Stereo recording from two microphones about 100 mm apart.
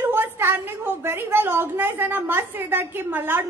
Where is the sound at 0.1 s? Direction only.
25° right (ahead or behind).